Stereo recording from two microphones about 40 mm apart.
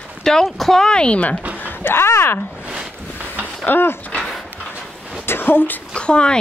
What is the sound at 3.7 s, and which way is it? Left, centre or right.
Speech, left.